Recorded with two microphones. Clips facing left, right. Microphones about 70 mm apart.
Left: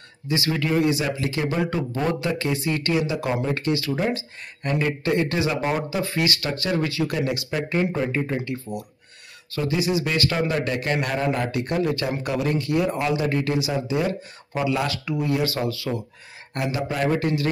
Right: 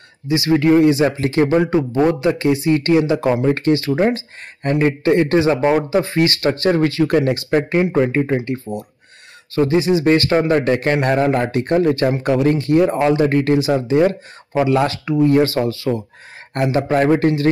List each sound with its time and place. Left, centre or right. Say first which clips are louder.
0.3 s speech: right 9 dB; right
1.7 s a man's voice: right 9 dB; right